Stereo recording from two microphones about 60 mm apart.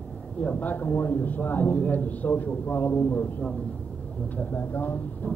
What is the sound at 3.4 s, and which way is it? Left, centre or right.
Speech, centre.